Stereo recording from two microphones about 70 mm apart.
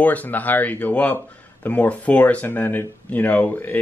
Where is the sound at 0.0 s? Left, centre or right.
Left.